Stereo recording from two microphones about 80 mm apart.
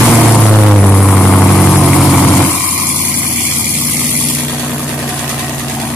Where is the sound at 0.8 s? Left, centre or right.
Centre.